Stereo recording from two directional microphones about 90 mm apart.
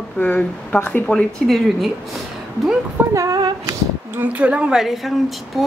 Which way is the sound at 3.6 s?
25° right (ahead or behind).